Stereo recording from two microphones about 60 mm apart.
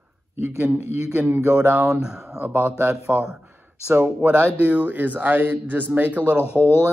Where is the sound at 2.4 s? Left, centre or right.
Right.